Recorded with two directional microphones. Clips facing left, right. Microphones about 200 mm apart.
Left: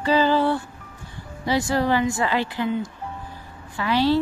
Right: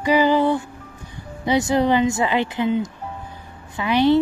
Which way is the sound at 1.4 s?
20° right (ahead or behind).